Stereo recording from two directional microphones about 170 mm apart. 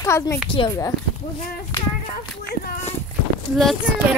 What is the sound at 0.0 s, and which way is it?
Speech, 15° left (ahead or behind).